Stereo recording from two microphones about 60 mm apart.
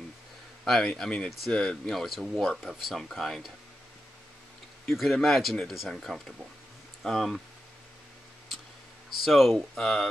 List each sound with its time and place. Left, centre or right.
0.7 s a man's voice: centre
1.9 s speech: centre
4.8 s speech: centre
9.2 s speech: centre
9.8 s a man's voice: centre